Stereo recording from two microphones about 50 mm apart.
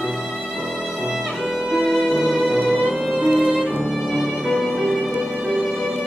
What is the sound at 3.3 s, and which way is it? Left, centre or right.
Music, centre.